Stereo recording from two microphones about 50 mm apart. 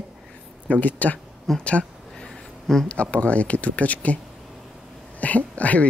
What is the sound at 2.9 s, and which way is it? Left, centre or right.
Speech, left.